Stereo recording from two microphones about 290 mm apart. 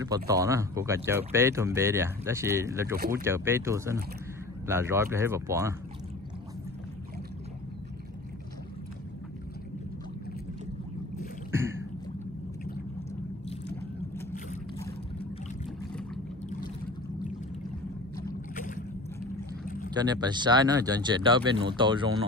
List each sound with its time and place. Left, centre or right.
0.0 s speech: centre
11.5 s a sound: centre
18.5 s boat: left
19.9 s speech: centre